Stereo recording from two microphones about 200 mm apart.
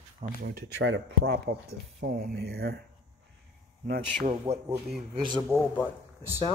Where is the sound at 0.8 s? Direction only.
65° right (ahead or behind).